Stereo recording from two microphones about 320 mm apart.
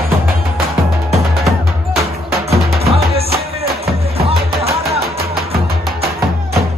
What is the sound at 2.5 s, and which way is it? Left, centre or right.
Music, centre.